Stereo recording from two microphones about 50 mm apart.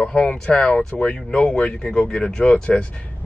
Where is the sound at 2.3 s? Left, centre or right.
Centre.